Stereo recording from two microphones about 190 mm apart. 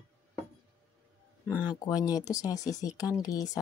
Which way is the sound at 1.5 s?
20° left (ahead or behind).